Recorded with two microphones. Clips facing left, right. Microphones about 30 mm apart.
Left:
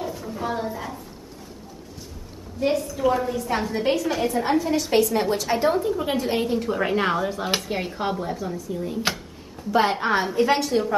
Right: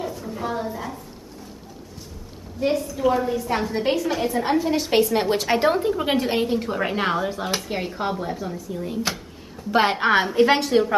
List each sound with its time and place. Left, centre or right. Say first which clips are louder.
0.3 s a woman's voice: even; centre
2.6 s a woman's voice: right 1 dB; centre; by 5.4 s right
5.4 s a woman's voice: right 2 dB; right
6.3 s a woman's voice: right 1 dB; centre
9.7 s a woman's voice: right 1 dB; right
9.9 s a woman's voice: right 3 dB; right